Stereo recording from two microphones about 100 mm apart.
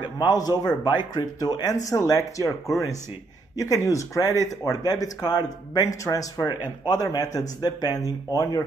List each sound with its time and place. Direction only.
0.0 s a man's voice: 45° left (ahead or behind)